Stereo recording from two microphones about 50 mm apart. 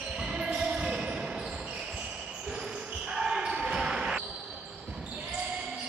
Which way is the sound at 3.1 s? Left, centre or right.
Centre.